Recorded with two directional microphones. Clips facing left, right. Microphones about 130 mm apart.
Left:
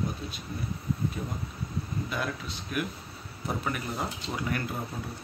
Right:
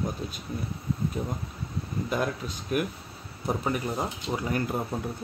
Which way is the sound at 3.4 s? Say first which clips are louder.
Right 4 dB; 30° right (ahead or behind).